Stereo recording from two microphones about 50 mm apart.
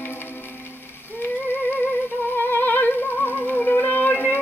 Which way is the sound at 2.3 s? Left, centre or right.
Left.